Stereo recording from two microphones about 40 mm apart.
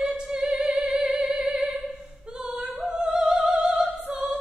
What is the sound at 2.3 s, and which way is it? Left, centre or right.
Singing, centre.